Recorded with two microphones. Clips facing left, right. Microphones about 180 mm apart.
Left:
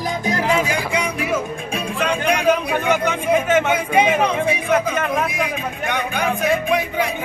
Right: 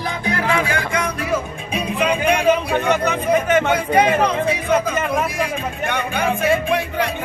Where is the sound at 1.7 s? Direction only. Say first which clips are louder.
Right 3 dB; 5° right (ahead or behind).